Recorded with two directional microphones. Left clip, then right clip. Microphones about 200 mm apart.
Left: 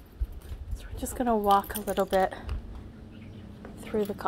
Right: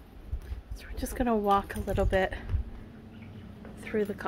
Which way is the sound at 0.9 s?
10° right (ahead or behind).